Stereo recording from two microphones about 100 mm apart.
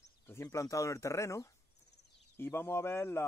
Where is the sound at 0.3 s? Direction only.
30° left (ahead or behind).